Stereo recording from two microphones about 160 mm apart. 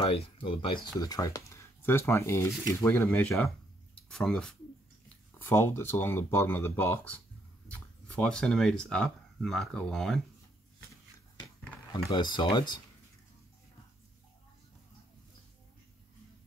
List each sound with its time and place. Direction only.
0.0 s speech: 35° left (ahead or behind)
0.9 s speech: 25° left (ahead or behind)
3.9 s speech: 5° left (ahead or behind)
5.4 s speech: 15° left (ahead or behind)
11.9 s speech: 30° left (ahead or behind)